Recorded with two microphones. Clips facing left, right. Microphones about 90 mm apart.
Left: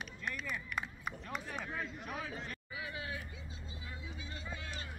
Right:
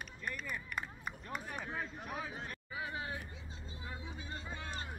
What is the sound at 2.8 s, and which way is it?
Vehicle, 35° right (ahead or behind).